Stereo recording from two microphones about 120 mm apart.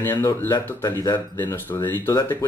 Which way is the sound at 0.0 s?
15° left (ahead or behind).